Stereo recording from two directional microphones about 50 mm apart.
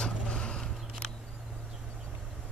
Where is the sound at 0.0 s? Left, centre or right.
Left.